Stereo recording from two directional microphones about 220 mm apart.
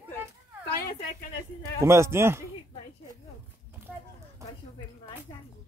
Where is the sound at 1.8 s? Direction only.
10° right (ahead or behind).